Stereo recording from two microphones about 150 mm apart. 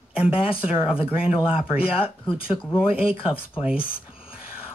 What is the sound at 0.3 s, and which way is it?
Speech, 40° left (ahead or behind).